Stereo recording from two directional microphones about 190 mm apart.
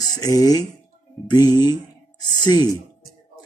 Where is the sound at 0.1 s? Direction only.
20° left (ahead or behind).